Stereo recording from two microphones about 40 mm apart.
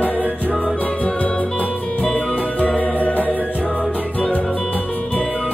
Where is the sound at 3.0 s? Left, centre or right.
Left.